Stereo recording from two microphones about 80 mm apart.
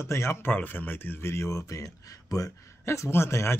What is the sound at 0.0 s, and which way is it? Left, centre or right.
Speech, left.